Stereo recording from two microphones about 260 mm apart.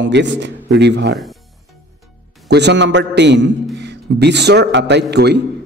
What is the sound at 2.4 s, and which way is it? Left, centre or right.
A man's voice, right.